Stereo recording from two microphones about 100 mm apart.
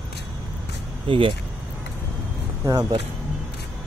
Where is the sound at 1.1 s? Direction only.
60° right (ahead or behind).